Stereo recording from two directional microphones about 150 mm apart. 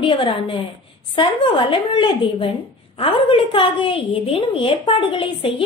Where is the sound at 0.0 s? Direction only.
30° left (ahead or behind).